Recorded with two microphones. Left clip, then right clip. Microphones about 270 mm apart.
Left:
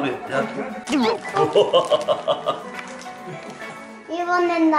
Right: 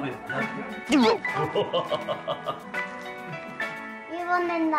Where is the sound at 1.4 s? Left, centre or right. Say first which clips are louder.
Left 9 dB; right.